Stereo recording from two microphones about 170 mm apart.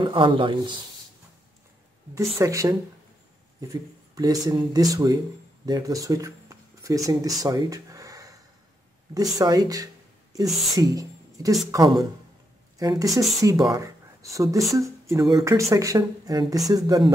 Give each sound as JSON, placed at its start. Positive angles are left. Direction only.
{"t": 0.0, "sound": "speech", "side_deg": -30}
{"t": 2.3, "sound": "speech", "side_deg": -20}